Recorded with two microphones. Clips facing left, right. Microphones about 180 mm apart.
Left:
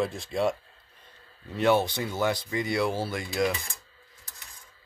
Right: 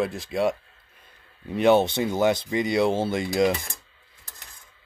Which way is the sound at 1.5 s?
20° right (ahead or behind).